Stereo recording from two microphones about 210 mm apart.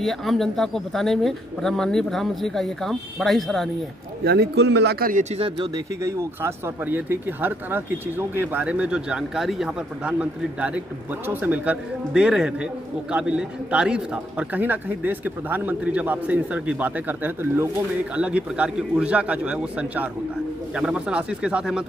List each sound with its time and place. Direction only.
0.0 s speech: centre (ahead or behind)
4.2 s speech: 50° right (ahead or behind)
5.3 s speech: 25° right (ahead or behind)
6.0 s a man's voice: 10° right (ahead or behind)